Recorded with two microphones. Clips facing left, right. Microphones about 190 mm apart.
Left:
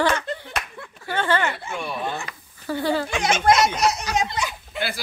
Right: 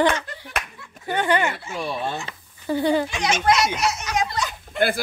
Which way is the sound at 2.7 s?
20° right (ahead or behind).